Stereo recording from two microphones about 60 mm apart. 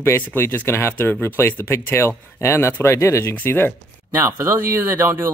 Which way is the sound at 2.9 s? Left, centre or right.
Left.